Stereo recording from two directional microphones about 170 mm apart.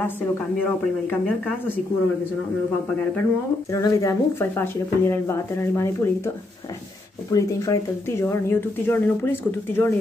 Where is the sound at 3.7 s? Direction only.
20° left (ahead or behind).